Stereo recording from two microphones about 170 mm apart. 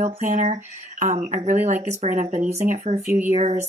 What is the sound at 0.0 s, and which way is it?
Speech, 45° right (ahead or behind).